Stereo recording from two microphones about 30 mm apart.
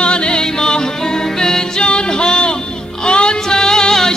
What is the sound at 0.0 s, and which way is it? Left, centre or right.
Music, left.